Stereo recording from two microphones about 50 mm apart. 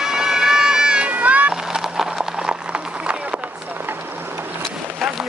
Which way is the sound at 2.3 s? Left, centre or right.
Right.